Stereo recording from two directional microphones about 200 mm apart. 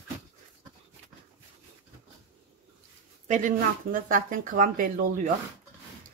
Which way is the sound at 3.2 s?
40° right (ahead or behind).